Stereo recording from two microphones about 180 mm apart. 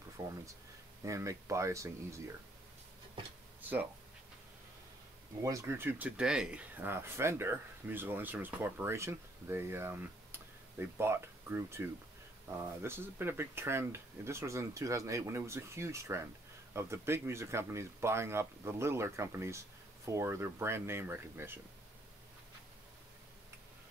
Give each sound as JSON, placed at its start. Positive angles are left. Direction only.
{"t": 1.0, "sound": "speech", "side_deg": -15}
{"t": 5.4, "sound": "speech", "side_deg": -15}